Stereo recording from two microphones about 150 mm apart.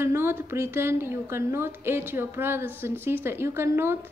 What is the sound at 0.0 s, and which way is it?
A woman's voice, 15° right (ahead or behind).